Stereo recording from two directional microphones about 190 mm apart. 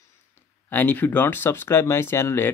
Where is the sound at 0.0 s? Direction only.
10° left (ahead or behind).